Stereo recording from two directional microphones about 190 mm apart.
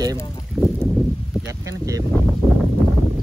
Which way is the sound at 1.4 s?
15° right (ahead or behind).